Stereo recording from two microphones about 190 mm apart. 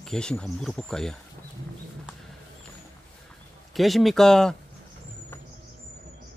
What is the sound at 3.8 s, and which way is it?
Speech, centre (ahead or behind).